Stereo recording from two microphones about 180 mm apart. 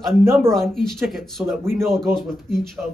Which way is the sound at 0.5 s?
Centre (ahead or behind).